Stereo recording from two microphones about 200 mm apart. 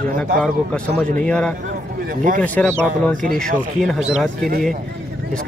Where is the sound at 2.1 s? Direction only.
40° right (ahead or behind).